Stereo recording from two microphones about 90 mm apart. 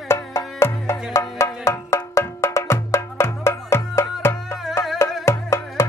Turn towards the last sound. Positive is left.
turn(degrees=30)  # may be behind; listen again after turning